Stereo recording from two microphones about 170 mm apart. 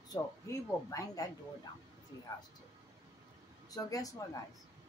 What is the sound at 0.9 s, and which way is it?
Speech, 20° left (ahead or behind).